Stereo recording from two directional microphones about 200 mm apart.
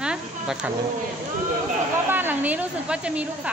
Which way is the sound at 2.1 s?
10° right (ahead or behind).